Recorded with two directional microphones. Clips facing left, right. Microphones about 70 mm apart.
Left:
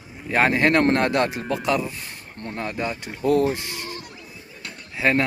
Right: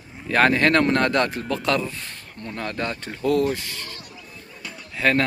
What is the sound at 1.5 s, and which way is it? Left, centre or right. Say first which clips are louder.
Speech: even; centre.